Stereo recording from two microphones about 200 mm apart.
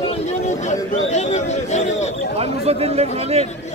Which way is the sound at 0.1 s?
35° left (ahead or behind).